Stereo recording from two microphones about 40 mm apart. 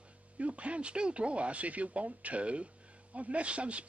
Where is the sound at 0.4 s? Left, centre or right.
Right.